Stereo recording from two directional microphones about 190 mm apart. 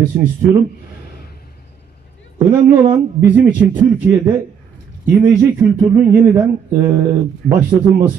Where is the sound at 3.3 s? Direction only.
10° right (ahead or behind).